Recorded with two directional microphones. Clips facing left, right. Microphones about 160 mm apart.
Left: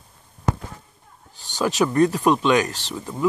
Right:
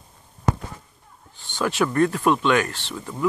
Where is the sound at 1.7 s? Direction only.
20° left (ahead or behind).